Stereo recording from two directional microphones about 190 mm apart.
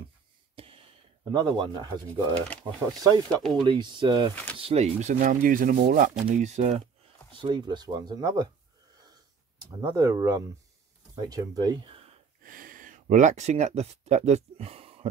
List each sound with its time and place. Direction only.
0.6 s a sound: 30° right (ahead or behind)
1.3 s speech: 25° right (ahead or behind)
7.3 s speech: 25° right (ahead or behind)
9.6 s speech: 20° right (ahead or behind)
12.4 s speech: 45° right (ahead or behind); by 15.0 s 30° right (ahead or behind)